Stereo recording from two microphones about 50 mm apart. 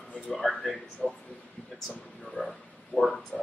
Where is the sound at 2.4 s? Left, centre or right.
Left.